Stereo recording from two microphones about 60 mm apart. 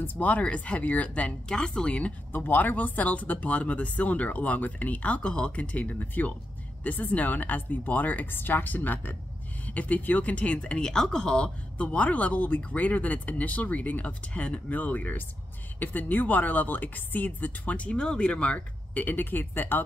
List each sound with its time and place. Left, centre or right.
0.0 s speech: left
2.3 s speech: left